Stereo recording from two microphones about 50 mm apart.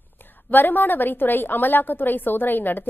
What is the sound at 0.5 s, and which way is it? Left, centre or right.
A woman's voice, left.